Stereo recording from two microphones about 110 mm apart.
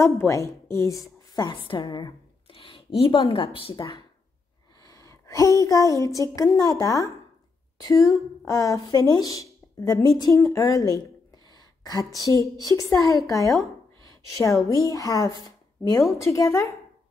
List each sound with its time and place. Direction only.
0.0 s a woman's voice: 25° left (ahead or behind)
1.3 s a woman's voice: 45° left (ahead or behind)
2.4 s a sound: 55° left (ahead or behind)
3.8 s a woman's voice: 40° left (ahead or behind)
4.8 s a woman's voice: 30° left (ahead or behind)
11.5 s a sound: 35° left (ahead or behind)
12.9 s a woman's voice: 30° left (ahead or behind)